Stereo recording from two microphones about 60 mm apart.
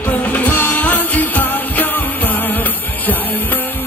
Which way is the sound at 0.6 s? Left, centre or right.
Left.